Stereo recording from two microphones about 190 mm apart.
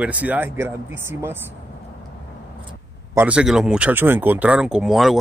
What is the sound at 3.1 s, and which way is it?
Speech, 10° right (ahead or behind).